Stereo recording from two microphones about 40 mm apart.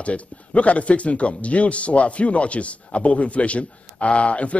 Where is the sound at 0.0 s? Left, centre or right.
Left.